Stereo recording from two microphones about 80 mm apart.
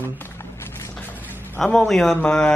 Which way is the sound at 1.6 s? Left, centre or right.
Centre.